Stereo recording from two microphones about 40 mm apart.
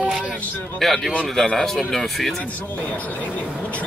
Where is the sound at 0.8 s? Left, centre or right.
Centre.